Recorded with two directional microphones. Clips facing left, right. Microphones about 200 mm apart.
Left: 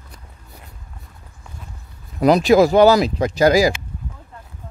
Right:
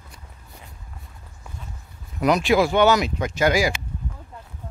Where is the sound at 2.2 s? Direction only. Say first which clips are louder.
Left 6 dB; 35° left (ahead or behind).